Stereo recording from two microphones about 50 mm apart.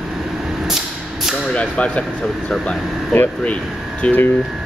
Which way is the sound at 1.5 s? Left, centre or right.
Left.